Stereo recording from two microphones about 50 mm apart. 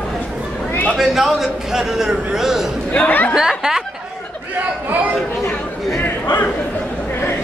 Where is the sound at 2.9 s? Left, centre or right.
Left.